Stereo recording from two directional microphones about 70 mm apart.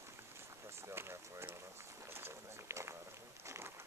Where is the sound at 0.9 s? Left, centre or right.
Right.